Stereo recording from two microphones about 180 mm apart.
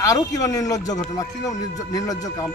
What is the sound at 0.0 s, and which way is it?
A man's voice, 20° left (ahead or behind).